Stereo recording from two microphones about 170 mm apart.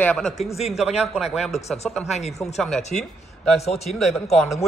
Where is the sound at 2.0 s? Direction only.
40° left (ahead or behind).